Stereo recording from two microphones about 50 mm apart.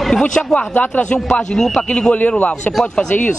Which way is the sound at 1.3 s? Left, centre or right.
Centre.